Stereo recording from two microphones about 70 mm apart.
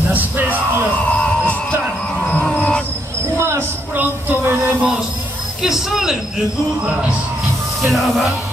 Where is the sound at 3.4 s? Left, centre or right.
Right.